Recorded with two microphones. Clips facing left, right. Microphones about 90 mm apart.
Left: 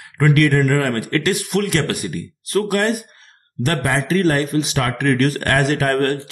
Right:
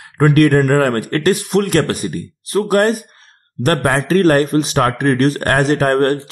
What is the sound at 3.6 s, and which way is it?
Speech, 50° right (ahead or behind).